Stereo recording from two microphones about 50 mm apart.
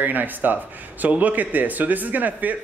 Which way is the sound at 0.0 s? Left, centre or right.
Right.